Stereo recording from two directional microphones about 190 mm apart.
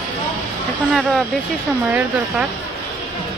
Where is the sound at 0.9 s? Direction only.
Centre (ahead or behind).